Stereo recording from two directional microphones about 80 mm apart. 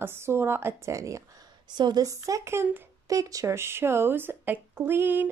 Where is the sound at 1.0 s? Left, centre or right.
Right.